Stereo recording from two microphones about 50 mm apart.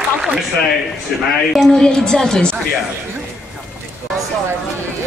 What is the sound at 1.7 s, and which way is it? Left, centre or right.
Speech, centre.